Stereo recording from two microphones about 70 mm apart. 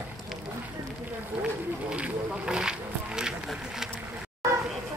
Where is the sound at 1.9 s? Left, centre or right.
Centre.